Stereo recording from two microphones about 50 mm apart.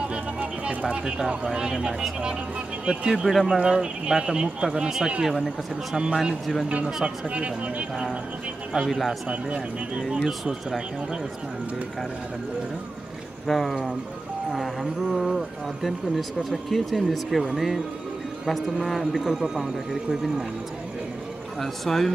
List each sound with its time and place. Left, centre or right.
0.1 s a sound: right
0.9 s speech: centre
3.3 s speech: centre
3.5 s speech: centre
7.2 s speech: right
8.7 s speech: centre
9.3 s speech: right
10.0 s speech: centre
13.5 s speech: centre
19.1 s speech: centre
21.5 s speech: centre